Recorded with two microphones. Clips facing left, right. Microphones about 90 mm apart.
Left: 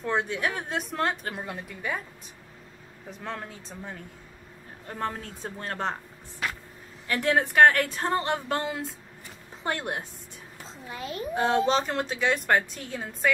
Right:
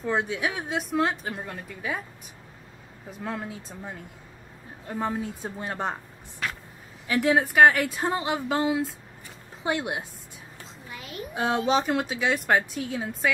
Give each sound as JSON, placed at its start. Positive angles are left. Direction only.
{"t": 0.0, "sound": "a woman's voice", "side_deg": -5}
{"t": 3.1, "sound": "speech", "side_deg": -5}
{"t": 7.1, "sound": "a woman's voice", "side_deg": -5}
{"t": 10.9, "sound": "a child's voice", "side_deg": 35}
{"t": 11.3, "sound": "a woman's voice", "side_deg": -5}